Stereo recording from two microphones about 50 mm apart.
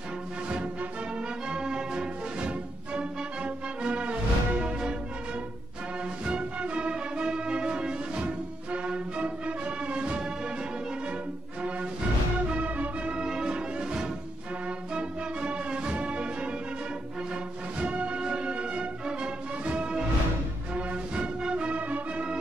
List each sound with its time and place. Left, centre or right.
1.5 s music: centre
6.2 s music: right
12.4 s music: right
17.7 s music: right